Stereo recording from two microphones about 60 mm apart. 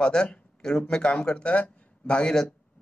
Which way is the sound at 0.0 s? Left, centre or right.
Centre.